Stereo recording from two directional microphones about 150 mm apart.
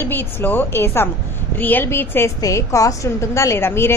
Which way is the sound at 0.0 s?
15° left (ahead or behind).